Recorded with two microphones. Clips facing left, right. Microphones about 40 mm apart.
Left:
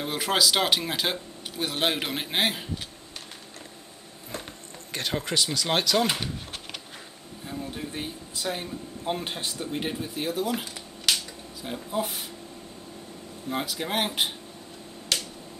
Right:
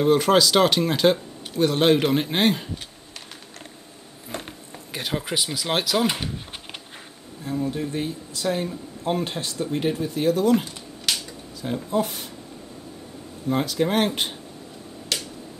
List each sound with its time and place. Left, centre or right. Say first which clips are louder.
0.0 s speech: right 8 dB; centre
4.9 s speech: right 1 dB; centre
7.7 s speech: right 7 dB; centre
13.5 s speech: right 7 dB; centre
15.1 s finger snapping: even; centre